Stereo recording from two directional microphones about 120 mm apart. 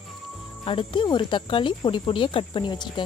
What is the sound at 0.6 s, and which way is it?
Speech, 45° left (ahead or behind).